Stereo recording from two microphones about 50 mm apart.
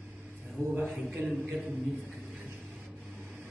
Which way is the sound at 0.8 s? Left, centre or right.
Centre.